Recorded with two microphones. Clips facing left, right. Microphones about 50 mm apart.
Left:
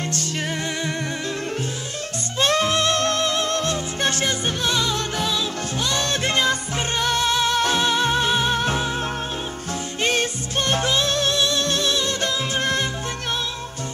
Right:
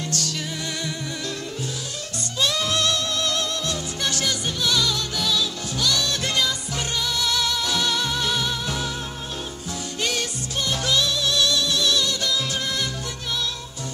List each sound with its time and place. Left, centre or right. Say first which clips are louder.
2.3 s music: left 4 dB; left
3.0 s music: left 4 dB; left
10.0 s music: left 6 dB; left
11.3 s music: left 1 dB; left